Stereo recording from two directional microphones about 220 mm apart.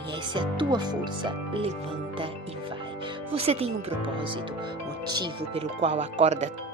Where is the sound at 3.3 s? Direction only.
25° right (ahead or behind).